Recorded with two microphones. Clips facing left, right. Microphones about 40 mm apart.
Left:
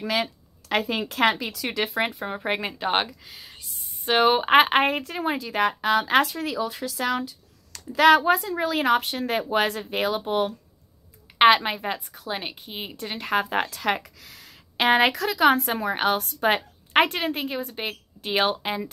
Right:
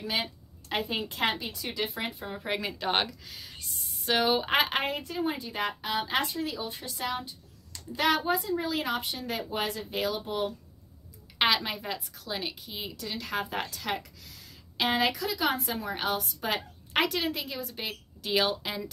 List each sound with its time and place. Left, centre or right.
0.1 s a woman's voice: left
2.3 s a woman's voice: left
2.8 s speech: centre
4.0 s speech: left
5.9 s a woman's voice: left
6.8 s a woman's voice: left
11.3 s a woman's voice: left